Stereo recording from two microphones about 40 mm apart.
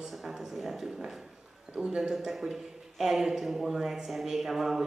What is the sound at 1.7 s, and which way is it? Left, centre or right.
Speech, right.